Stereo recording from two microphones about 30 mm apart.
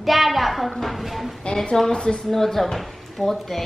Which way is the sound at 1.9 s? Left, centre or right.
Left.